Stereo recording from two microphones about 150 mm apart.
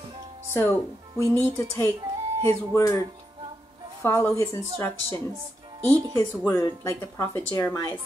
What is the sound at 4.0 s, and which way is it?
Speech, 15° left (ahead or behind).